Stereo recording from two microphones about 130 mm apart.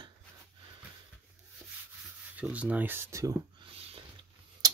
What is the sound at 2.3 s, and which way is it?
Speech, 10° right (ahead or behind).